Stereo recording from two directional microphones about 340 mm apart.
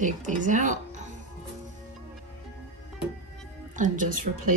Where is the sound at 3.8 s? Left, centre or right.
Right.